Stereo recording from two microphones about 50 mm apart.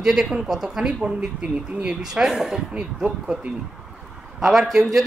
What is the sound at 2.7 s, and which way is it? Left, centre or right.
Speech, centre.